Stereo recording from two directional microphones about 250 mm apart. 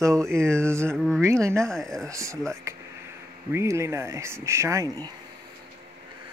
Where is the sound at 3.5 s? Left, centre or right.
Centre.